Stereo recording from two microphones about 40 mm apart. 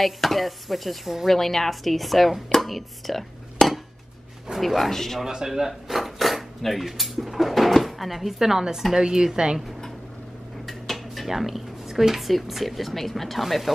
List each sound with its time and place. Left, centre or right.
0.0 s speech: centre
3.6 s dishes: centre
4.6 s speech: centre
5.2 s a woman's voice: centre
10.7 s dishes: centre
11.2 s speech: centre